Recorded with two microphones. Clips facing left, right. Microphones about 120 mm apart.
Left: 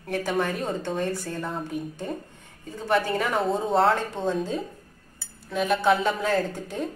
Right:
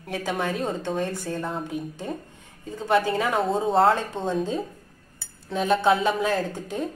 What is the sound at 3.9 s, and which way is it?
Speech, 15° right (ahead or behind).